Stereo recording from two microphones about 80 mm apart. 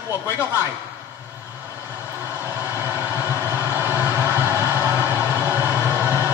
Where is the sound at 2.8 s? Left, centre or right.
Right.